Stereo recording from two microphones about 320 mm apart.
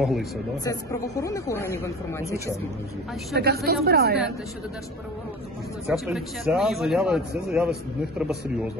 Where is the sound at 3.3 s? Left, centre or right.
Right.